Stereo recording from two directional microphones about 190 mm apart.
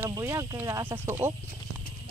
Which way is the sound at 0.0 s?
15° right (ahead or behind).